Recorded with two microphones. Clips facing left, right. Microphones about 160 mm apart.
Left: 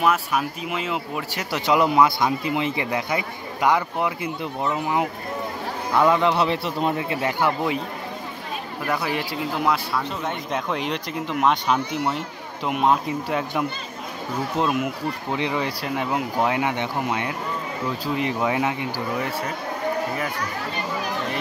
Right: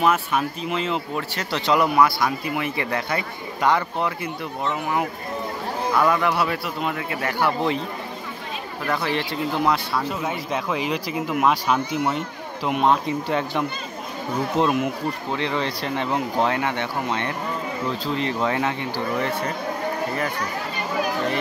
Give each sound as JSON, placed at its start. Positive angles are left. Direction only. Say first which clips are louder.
{"t": 0.0, "sound": "a man's voice", "louder": "right 1 dB", "side_deg": 5}
{"t": 8.8, "sound": "speech", "louder": "right 1 dB", "side_deg": 10}
{"t": 9.9, "sound": "speech", "louder": "right 1 dB", "side_deg": -5}
{"t": 15.3, "sound": "speech", "louder": "left 1 dB", "side_deg": 15}